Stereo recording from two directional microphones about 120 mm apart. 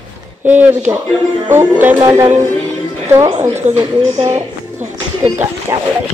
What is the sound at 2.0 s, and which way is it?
Speech, 25° right (ahead or behind).